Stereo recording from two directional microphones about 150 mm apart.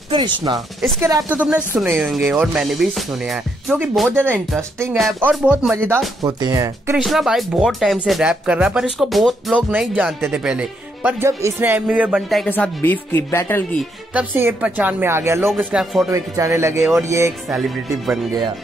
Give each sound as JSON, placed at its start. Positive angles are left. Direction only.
{"t": 0.1, "sound": "speech", "side_deg": -30}
{"t": 1.3, "sound": "speech", "side_deg": -10}
{"t": 5.3, "sound": "speech", "side_deg": -5}
{"t": 6.2, "sound": "speech", "side_deg": -25}
{"t": 7.0, "sound": "speech", "side_deg": 0}
{"t": 12.4, "sound": "speech", "side_deg": 10}
{"t": 14.1, "sound": "speech", "side_deg": -10}
{"t": 15.7, "sound": "speech", "side_deg": 0}
{"t": 16.1, "sound": "speech", "side_deg": -20}
{"t": 17.5, "sound": "speech", "side_deg": 0}